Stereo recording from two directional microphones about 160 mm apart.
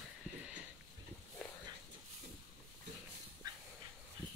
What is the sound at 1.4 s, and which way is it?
Dog, 5° left (ahead or behind).